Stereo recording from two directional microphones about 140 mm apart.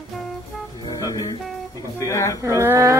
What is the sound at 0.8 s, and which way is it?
Music, 25° left (ahead or behind).